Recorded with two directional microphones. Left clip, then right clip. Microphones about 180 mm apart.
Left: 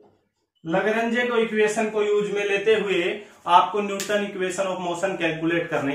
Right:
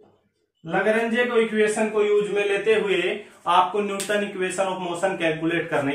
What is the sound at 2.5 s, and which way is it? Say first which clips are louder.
Speech: left 2 dB; centre (ahead or behind).